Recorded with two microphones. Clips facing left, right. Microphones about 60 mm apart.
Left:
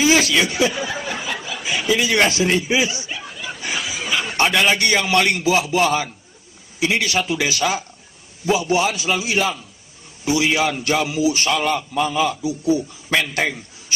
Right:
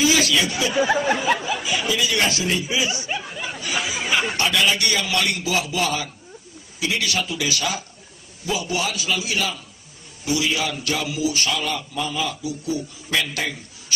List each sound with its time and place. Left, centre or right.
0.0 s snicker: left
0.5 s a man's voice: left
0.7 s speech: right
1.6 s speech: left
3.7 s a sound: right
4.4 s a man's voice: left
11.5 s a man's voice: left
12.4 s a man's voice: left